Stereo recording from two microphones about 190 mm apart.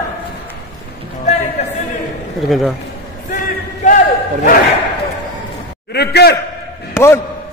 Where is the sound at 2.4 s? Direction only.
Centre (ahead or behind).